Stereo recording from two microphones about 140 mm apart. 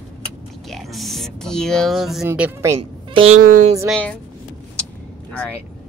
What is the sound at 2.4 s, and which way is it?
Speech, 20° right (ahead or behind).